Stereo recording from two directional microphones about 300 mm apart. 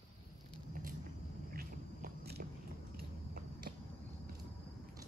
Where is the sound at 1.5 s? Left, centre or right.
Right.